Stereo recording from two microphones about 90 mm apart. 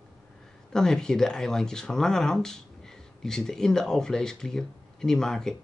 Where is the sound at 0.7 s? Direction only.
5° left (ahead or behind).